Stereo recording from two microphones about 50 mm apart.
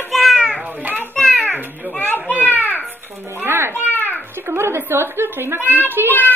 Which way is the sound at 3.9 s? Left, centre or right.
Left.